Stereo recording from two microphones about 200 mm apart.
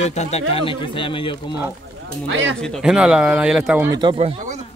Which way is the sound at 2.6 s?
Centre (ahead or behind).